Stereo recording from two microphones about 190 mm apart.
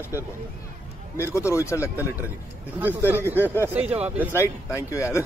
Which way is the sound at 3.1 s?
10° right (ahead or behind).